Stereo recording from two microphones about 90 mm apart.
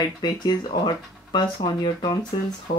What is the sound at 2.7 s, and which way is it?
Speech, 90° left.